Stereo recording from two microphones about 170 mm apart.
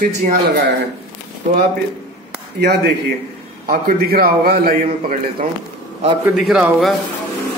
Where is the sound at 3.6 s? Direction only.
60° right (ahead or behind).